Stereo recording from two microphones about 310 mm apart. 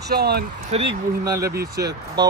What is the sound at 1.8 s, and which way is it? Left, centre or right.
Speech, centre.